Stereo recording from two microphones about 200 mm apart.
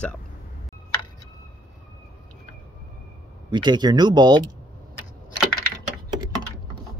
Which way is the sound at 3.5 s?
20° right (ahead or behind).